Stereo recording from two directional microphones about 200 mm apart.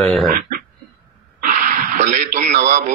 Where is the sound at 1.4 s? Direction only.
45° right (ahead or behind).